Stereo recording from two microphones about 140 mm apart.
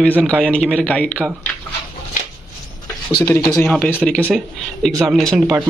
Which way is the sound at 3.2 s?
25° left (ahead or behind).